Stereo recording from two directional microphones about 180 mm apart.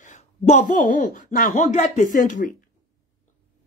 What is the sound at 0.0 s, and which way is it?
Speech, 40° left (ahead or behind).